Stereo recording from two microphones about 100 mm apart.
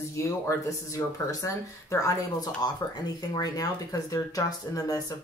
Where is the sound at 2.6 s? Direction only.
40° left (ahead or behind).